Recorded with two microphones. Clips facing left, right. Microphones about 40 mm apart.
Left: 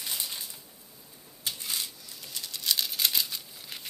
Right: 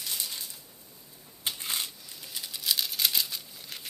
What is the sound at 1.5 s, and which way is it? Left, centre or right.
Coin, right.